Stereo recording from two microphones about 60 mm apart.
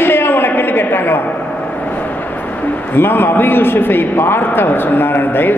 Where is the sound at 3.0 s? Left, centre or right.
Left.